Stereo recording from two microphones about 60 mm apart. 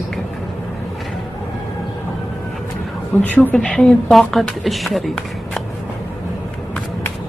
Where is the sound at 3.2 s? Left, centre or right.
Left.